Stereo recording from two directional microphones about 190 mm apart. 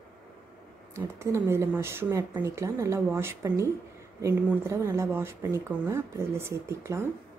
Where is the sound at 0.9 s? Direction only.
15° right (ahead or behind).